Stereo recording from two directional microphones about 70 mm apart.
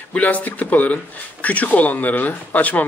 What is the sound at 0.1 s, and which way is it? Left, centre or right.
Speech, left.